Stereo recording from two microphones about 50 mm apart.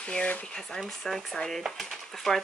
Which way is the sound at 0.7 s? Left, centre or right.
Centre.